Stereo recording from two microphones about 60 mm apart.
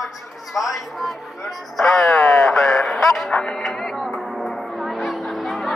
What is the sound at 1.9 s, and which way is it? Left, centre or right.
Speech, centre.